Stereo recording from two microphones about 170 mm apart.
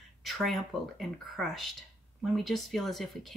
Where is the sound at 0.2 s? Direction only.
Centre (ahead or behind).